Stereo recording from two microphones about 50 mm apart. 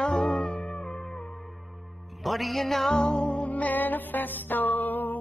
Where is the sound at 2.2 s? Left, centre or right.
Centre.